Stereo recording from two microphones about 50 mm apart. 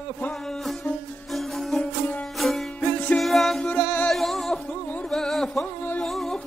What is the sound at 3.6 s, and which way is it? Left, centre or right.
Music, left.